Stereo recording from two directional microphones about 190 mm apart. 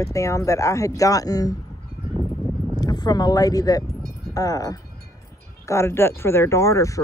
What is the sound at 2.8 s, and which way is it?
Speech, 20° left (ahead or behind).